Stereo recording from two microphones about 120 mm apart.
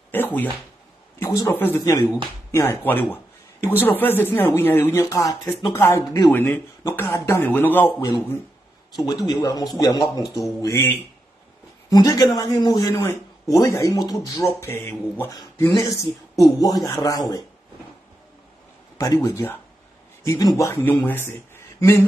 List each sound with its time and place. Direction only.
0.1 s speech: 15° left (ahead or behind); by 5.5 s 30° left (ahead or behind)
5.5 s speech: 20° left (ahead or behind)
8.9 s a man's voice: 35° left (ahead or behind)
11.9 s a man's voice: 30° left (ahead or behind)
14.6 s speech: 20° left (ahead or behind)
16.4 s a man's voice: 35° left (ahead or behind)
18.9 s speech: 30° left (ahead or behind)
20.6 s speech: 20° left (ahead or behind)